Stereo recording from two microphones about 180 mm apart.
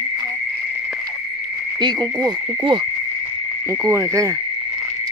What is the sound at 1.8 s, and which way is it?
Insect, 20° right (ahead or behind).